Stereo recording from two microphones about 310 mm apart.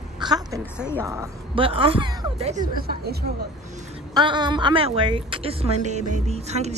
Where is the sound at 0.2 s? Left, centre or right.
Centre.